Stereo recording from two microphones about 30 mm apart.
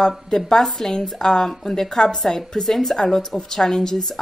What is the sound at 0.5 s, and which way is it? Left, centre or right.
A woman's voice, centre.